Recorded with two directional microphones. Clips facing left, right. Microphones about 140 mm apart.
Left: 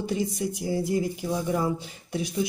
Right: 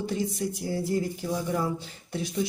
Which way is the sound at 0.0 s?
15° left (ahead or behind).